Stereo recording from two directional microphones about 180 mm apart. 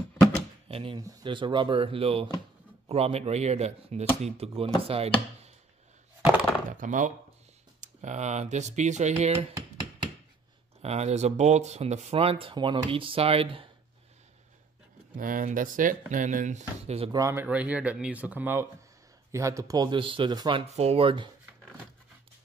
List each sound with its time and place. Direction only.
0.7 s speech: 30° right (ahead or behind)
6.7 s speech: 45° right (ahead or behind)
10.8 s speech: 35° right (ahead or behind)
15.1 s speech: 50° right (ahead or behind)
17.1 s speech: 15° right (ahead or behind)
20.7 s speech: 35° right (ahead or behind)